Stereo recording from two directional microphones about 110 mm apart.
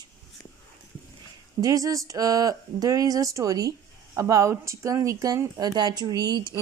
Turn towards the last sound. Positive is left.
turn(degrees=-40)  # may be behind; listen again after turning